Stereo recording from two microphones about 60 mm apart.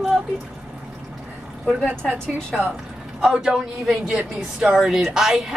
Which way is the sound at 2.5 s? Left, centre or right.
Centre.